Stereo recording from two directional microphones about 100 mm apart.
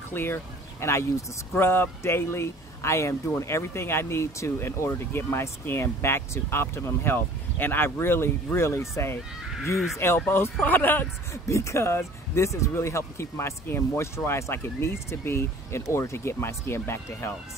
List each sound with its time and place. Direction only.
0.1 s speech: 20° left (ahead or behind)